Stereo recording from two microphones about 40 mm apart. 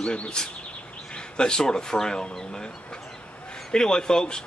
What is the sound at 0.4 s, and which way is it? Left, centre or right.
Speech, centre.